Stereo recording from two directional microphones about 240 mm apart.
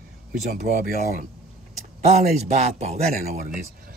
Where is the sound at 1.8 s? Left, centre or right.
Right.